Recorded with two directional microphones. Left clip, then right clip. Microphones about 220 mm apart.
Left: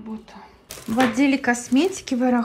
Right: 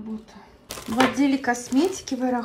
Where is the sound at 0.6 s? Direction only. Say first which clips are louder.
Even; centre (ahead or behind).